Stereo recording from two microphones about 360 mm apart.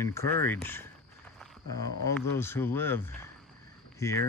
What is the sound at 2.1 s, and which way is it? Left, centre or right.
Speech, centre.